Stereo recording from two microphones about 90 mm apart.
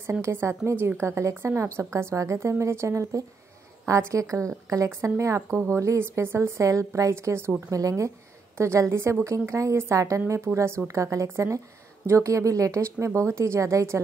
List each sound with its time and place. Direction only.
0.2 s a woman's voice: 30° right (ahead or behind)